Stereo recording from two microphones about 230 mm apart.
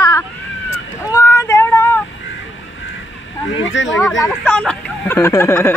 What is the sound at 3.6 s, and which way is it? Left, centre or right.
Speech, left.